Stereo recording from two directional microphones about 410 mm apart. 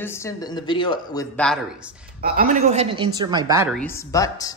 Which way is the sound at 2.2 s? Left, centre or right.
Centre.